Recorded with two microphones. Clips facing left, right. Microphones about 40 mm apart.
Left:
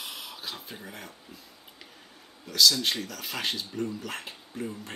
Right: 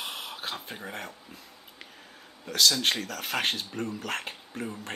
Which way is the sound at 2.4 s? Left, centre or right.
Right.